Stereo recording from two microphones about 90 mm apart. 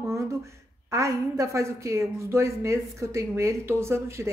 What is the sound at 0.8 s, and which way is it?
A woman's voice, 35° right (ahead or behind).